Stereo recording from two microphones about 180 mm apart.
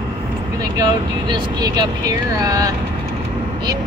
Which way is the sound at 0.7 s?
25° right (ahead or behind).